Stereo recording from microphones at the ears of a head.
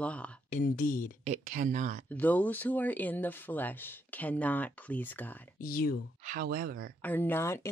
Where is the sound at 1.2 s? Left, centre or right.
Right.